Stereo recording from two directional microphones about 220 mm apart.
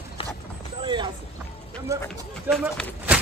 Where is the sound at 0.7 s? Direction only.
20° right (ahead or behind).